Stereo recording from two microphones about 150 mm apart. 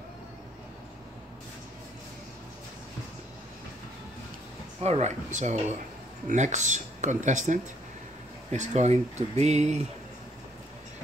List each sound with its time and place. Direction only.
4.8 s speech: 45° right (ahead or behind)